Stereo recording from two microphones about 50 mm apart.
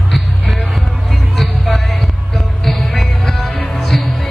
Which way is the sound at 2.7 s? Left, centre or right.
Centre.